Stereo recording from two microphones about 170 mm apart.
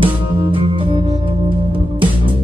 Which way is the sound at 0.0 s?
30° right (ahead or behind).